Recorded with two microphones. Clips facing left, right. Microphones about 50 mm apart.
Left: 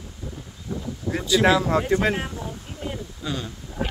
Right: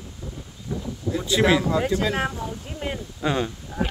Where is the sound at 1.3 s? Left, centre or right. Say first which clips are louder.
Left 1 dB; right.